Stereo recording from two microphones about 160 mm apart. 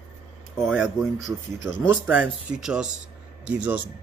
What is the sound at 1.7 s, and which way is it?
Speech, 15° right (ahead or behind).